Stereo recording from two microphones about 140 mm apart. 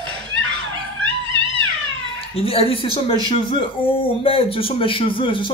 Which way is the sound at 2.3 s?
45° left (ahead or behind).